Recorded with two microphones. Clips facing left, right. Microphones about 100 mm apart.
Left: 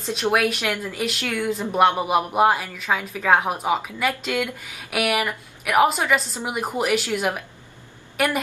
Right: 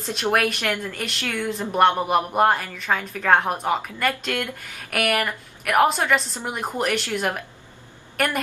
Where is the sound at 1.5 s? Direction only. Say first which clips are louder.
Even; centre (ahead or behind).